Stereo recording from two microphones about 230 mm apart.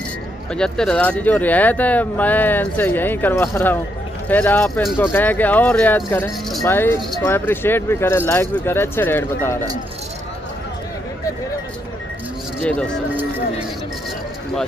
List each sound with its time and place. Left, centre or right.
0.6 s speech: centre
12.5 s speech: centre